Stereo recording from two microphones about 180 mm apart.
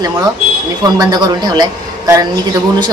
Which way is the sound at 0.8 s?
20° right (ahead or behind).